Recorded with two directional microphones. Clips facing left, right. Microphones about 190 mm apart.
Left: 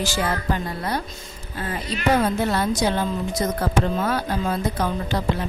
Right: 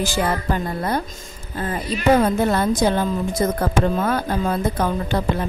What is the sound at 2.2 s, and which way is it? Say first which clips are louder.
A woman's voice: right 3 dB; 50° right (ahead or behind).